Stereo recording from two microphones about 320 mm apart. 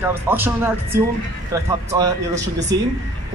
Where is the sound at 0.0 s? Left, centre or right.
Centre.